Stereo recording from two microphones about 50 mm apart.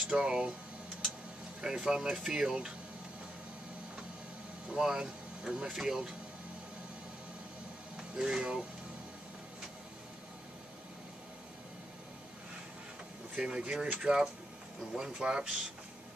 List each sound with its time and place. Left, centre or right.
0.1 s speech: centre
1.6 s speech: centre
4.6 s speech: centre
8.2 s speech: centre
13.4 s speech: centre